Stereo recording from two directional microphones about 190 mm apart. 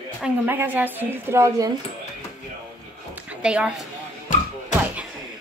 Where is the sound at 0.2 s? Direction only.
10° right (ahead or behind).